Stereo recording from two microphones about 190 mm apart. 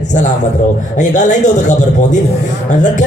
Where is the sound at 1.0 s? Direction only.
40° left (ahead or behind).